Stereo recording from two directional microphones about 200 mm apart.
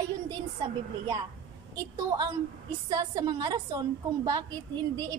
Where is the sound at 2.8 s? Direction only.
20° right (ahead or behind).